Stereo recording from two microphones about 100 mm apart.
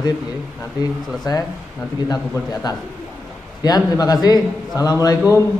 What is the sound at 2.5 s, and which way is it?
Speech, 40° left (ahead or behind).